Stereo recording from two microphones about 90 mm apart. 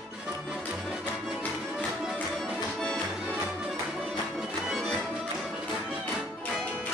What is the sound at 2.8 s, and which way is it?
Music, 10° left (ahead or behind).